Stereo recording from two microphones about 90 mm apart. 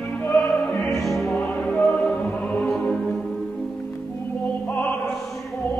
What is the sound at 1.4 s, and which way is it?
Music, 10° left (ahead or behind).